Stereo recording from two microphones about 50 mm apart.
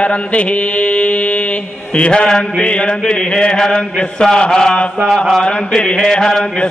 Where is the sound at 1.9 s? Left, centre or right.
Left.